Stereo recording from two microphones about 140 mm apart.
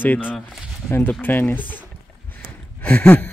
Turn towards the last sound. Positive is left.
turn(degrees=15)  # may be behind; listen again after turning